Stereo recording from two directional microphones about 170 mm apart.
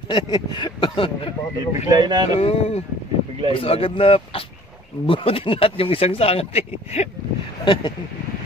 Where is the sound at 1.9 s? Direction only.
25° right (ahead or behind).